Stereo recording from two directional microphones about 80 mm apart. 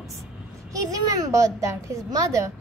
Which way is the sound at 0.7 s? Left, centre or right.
Right.